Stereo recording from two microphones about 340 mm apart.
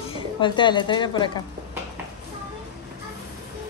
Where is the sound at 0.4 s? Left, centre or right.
Centre.